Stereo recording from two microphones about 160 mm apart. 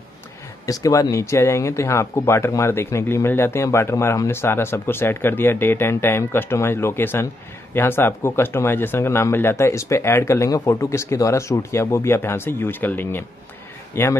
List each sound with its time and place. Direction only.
0.7 s speech: 20° left (ahead or behind)